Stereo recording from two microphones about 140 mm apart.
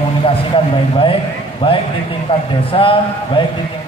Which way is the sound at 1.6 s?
40° left (ahead or behind).